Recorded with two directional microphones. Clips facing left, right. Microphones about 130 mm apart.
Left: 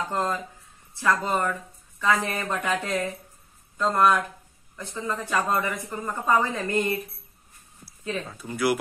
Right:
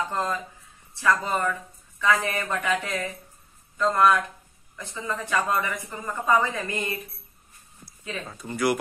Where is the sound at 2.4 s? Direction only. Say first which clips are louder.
Even; 25° left (ahead or behind).